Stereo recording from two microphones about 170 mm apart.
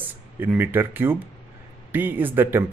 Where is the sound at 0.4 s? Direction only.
10° right (ahead or behind).